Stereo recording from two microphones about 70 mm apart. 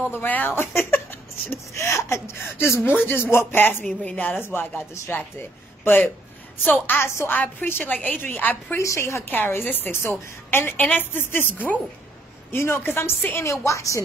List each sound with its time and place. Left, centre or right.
0.1 s a woman's voice: left
3.8 s a woman's voice: centre
7.0 s a woman's voice: left
7.3 s a woman's voice: left
8.7 s a woman's voice: left
9.2 s a woman's voice: left
13.5 s a woman's voice: left